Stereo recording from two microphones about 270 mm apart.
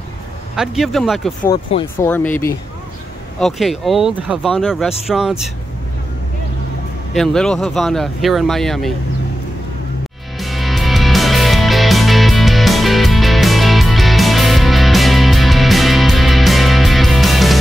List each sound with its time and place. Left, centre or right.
0.6 s speech: centre
1.5 s speech: centre
7.2 s speech: centre
10.4 s music: centre